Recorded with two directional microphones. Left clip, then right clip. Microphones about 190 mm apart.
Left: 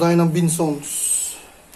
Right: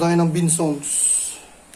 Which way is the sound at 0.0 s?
5° left (ahead or behind).